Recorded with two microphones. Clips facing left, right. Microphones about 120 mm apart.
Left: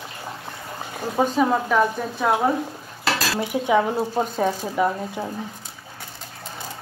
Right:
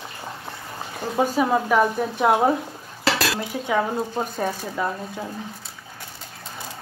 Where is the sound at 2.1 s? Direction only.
20° right (ahead or behind).